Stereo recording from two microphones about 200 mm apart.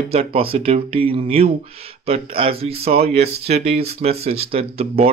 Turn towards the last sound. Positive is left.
turn(degrees=-30)  # may be behind; listen again after turning